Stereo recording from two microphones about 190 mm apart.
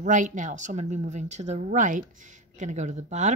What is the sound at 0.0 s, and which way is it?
Speech, 40° right (ahead or behind).